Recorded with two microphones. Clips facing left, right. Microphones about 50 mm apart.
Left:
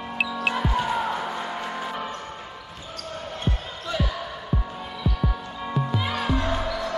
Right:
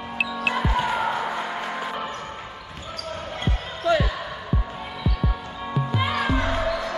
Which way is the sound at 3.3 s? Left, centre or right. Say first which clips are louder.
Even; right.